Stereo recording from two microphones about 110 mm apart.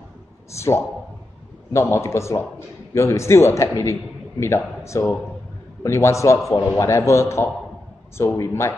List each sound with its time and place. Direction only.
0.6 s a man's voice: 25° left (ahead or behind)